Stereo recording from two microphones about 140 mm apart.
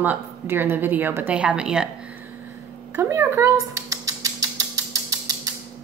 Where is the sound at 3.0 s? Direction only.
20° right (ahead or behind).